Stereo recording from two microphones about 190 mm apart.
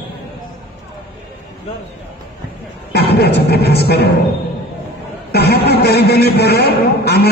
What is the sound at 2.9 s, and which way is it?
Speech, 60° left (ahead or behind).